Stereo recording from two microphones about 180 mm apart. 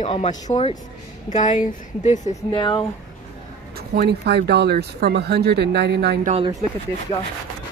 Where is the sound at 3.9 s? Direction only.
65° right (ahead or behind).